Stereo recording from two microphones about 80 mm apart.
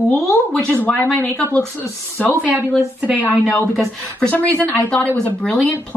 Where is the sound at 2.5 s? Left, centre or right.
Centre.